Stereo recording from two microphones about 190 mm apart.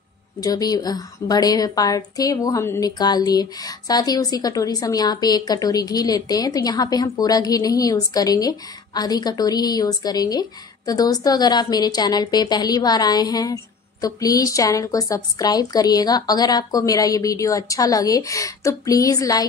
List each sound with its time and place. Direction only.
0.4 s a woman's voice: 20° left (ahead or behind)